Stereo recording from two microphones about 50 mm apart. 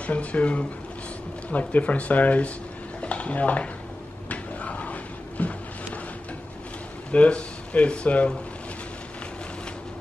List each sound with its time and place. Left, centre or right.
0.0 s speech: left
3.0 s stir: left
4.3 s a sound: left
7.1 s speech: left